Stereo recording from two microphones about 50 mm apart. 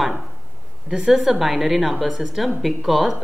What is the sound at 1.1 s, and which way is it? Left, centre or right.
A woman's voice, centre.